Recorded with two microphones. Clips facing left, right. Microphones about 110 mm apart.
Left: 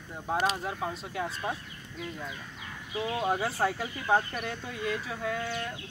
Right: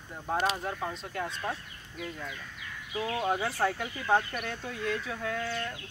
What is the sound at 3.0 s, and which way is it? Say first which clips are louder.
Speech: left 1 dB; 5° left (ahead or behind).